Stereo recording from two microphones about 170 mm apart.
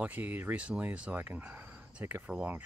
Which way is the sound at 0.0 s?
10° right (ahead or behind).